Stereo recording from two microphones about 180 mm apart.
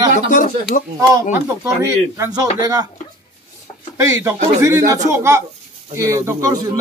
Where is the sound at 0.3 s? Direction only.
50° left (ahead or behind).